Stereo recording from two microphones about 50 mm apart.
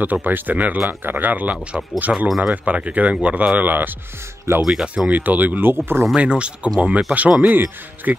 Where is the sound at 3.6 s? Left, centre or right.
Right.